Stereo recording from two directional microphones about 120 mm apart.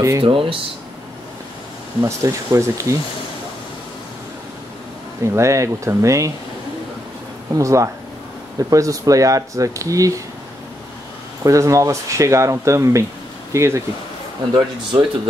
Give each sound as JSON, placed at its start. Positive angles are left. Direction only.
{"t": 0.2, "sound": "speech", "side_deg": -45}
{"t": 2.0, "sound": "speech", "side_deg": -25}
{"t": 5.2, "sound": "speech", "side_deg": -25}
{"t": 7.5, "sound": "speech", "side_deg": -25}
{"t": 11.4, "sound": "speech", "side_deg": -25}
{"t": 14.5, "sound": "speech", "side_deg": -40}